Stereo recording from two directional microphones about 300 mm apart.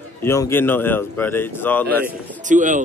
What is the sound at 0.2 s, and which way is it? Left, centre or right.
Speech, centre.